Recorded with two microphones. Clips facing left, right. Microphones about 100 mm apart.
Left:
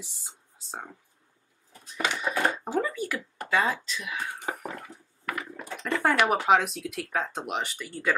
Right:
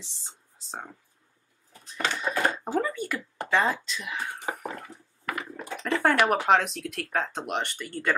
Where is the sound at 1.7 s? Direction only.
5° left (ahead or behind).